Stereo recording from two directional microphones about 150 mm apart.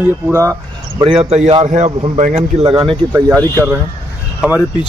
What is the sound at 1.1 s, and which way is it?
Speech, 45° right (ahead or behind).